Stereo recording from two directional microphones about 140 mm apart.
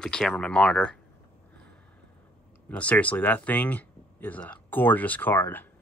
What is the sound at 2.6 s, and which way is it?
Speech, 10° left (ahead or behind).